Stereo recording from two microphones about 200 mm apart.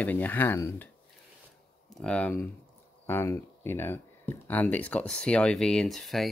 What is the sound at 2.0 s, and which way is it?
Speech, 5° left (ahead or behind).